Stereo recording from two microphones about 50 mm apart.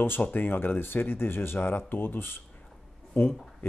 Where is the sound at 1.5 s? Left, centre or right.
Left.